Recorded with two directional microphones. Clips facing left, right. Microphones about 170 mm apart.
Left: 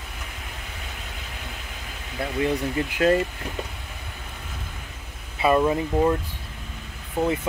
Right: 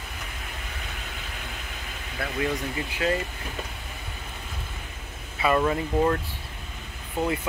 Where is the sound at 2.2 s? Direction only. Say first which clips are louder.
Left 3 dB; 25° left (ahead or behind).